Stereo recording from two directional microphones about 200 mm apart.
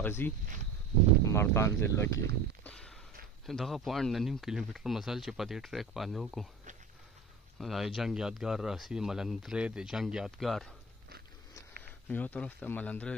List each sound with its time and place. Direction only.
0.0 s speech: 10° left (ahead or behind)
2.6 s a sound: 5° left (ahead or behind)
3.4 s speech: centre (ahead or behind)
7.5 s speech: centre (ahead or behind)
12.1 s speech: 10° left (ahead or behind)